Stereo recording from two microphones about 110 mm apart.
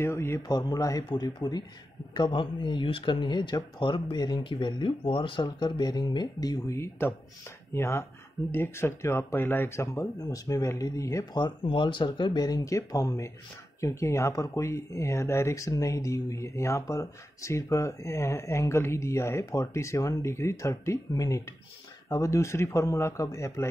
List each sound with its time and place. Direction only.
0.0 s speech: 25° left (ahead or behind)
0.5 s speech: 35° left (ahead or behind)
6.7 s speech: 25° left (ahead or behind)
10.2 s speech: 35° left (ahead or behind)